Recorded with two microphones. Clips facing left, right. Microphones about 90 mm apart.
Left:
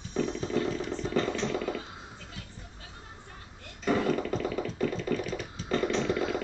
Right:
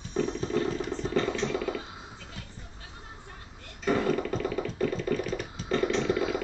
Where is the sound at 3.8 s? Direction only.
45° right (ahead or behind).